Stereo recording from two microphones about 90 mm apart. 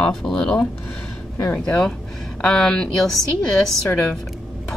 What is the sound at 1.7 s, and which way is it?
Speech, 10° left (ahead or behind).